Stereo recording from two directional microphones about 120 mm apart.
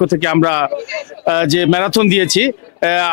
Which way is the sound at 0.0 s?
15° left (ahead or behind).